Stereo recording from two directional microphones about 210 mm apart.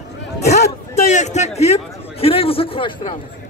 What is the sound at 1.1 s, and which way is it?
A man's voice, 35° left (ahead or behind).